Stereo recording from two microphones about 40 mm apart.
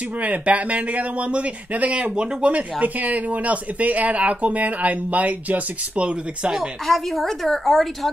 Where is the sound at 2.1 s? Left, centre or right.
Right.